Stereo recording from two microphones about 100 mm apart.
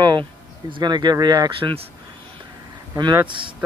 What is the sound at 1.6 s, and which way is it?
Speech, 65° right (ahead or behind).